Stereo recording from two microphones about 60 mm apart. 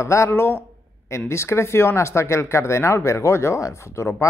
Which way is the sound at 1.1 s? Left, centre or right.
Left.